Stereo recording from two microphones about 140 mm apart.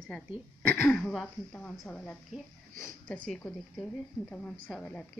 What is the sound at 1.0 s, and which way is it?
Speech, 10° left (ahead or behind).